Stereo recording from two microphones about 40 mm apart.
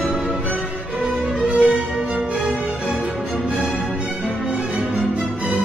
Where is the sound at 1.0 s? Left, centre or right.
Right.